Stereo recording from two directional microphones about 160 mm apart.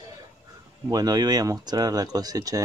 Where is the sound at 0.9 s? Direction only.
25° right (ahead or behind).